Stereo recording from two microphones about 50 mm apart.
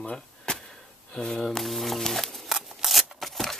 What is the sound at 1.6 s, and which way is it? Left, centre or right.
Speech, centre.